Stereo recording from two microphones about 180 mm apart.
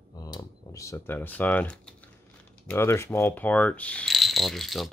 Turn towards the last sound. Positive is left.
turn(degrees=0)  # may be behind; listen again after turning